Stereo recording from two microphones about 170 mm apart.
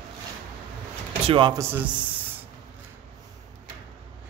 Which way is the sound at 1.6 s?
10° right (ahead or behind).